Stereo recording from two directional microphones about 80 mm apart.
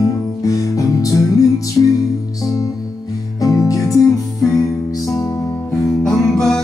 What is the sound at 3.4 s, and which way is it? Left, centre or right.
Music, left.